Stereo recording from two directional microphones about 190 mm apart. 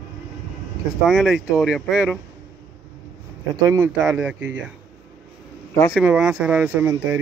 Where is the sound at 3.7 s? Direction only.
10° right (ahead or behind).